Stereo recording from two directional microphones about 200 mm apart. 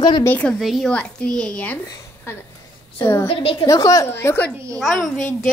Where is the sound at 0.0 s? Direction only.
20° left (ahead or behind).